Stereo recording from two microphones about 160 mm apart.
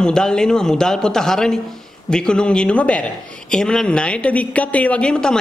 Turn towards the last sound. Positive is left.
turn(degrees=5)  # may be behind; listen again after turning